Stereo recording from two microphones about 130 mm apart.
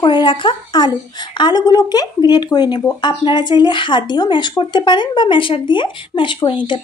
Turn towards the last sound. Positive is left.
turn(degrees=40)  # may be behind; listen again after turning